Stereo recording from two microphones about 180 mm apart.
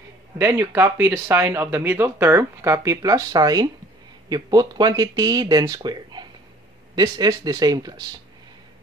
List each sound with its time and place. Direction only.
0.4 s speech: 10° right (ahead or behind)